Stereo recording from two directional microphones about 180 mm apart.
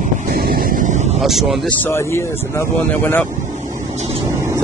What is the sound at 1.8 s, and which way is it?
Speech, 15° left (ahead or behind).